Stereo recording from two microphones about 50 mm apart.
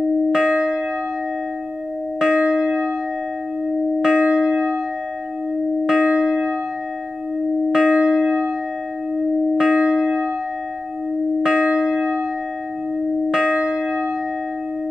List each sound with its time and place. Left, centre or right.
0.3 s music: centre
2.1 s music: centre
4.0 s music: centre
5.9 s music: centre
7.7 s music: centre
9.6 s music: centre
11.4 s church bell: centre
13.3 s church bell: centre